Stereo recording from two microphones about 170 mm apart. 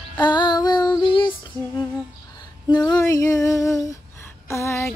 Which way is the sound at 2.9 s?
15° left (ahead or behind).